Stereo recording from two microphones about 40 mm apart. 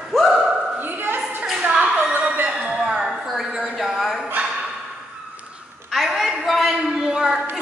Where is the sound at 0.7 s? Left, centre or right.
Right.